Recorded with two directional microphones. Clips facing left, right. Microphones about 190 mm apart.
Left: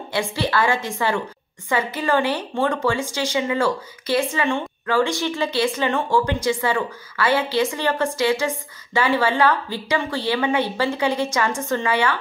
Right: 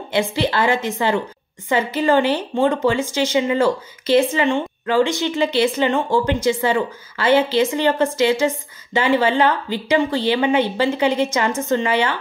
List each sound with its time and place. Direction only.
0.1 s speech: 20° right (ahead or behind)